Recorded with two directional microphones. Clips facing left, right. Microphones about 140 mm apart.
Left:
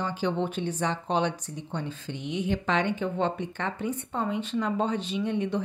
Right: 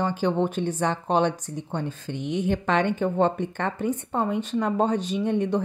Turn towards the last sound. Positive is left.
turn(degrees=-45)  # may be behind; listen again after turning